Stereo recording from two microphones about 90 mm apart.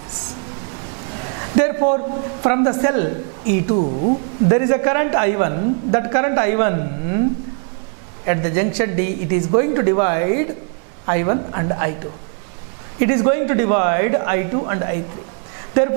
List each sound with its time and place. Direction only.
1.6 s a woman's voice: 15° right (ahead or behind)
8.3 s a woman's voice: 15° right (ahead or behind)
13.0 s a woman's voice: 10° right (ahead or behind)